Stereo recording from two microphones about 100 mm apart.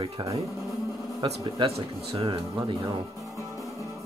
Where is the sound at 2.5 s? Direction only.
50° right (ahead or behind).